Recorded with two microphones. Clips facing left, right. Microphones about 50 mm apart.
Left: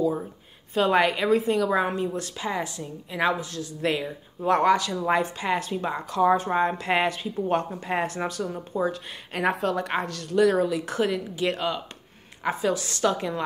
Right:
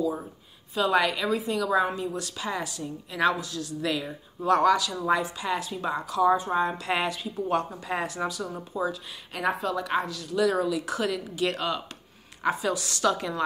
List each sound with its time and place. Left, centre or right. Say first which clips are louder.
0.7 s speech: left 3 dB; left
1.3 s a woman's voice: left 6 dB; left
1.6 s a woman's voice: left 1 dB; left
6.0 s speech: left 2 dB; left
10.0 s speech: left 1 dB; left
10.3 s a woman's voice: left 4 dB; left; by 11.8 s centre
12.4 s a woman's voice: left 1 dB; left